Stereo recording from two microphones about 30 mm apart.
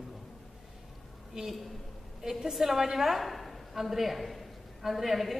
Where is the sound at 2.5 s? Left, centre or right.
Centre.